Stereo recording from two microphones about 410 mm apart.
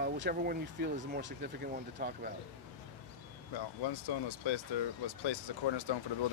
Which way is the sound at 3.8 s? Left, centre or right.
Left.